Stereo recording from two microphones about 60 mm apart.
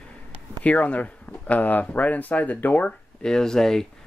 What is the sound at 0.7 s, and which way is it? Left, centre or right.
Speech, left.